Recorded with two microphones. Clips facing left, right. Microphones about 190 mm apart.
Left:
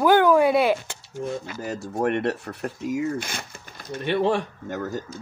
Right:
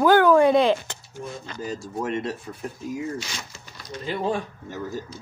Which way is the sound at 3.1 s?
55° left (ahead or behind).